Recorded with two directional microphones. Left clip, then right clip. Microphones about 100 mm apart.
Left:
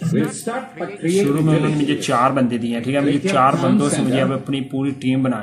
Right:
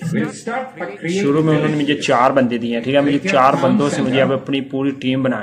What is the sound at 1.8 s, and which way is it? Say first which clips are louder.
Speech: right 4 dB; 25° left (ahead or behind).